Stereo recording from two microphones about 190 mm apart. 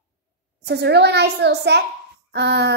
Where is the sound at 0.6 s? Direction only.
60° right (ahead or behind).